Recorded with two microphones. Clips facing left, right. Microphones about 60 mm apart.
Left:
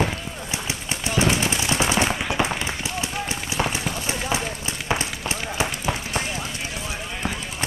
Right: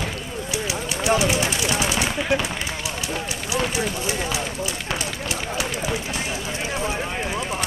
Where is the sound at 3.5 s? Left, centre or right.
Left.